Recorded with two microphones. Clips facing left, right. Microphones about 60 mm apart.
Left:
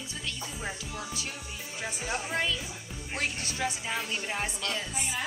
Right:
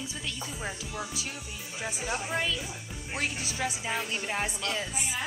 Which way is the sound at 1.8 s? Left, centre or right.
Centre.